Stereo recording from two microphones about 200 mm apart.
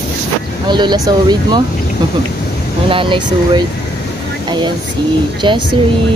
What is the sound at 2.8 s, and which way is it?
Speech, 25° right (ahead or behind).